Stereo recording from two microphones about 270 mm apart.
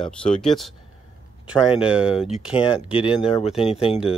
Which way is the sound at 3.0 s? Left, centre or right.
Left.